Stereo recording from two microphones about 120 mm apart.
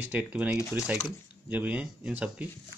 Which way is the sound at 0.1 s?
15° right (ahead or behind).